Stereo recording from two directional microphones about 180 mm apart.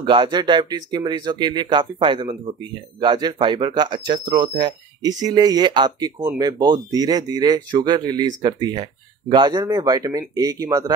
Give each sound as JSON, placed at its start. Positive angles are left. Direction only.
{"t": 0.0, "sound": "speech", "side_deg": -25}